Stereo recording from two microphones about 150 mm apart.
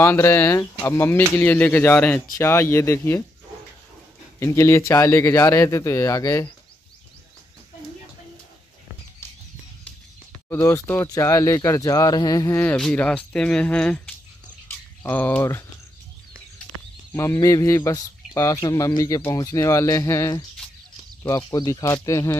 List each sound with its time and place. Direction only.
0.0 s speech: 15° left (ahead or behind)
4.4 s speech: 20° left (ahead or behind)
10.5 s speech: 15° left (ahead or behind)
12.5 s speech: 10° left (ahead or behind)
14.7 s a sound: 10° left (ahead or behind)
17.1 s speech: 20° left (ahead or behind)